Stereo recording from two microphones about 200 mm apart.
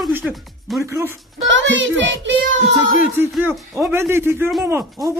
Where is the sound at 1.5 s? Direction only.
65° right (ahead or behind).